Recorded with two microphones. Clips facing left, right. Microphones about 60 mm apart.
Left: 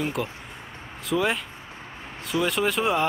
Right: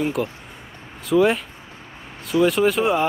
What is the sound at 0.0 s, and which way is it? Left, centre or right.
Speech, centre.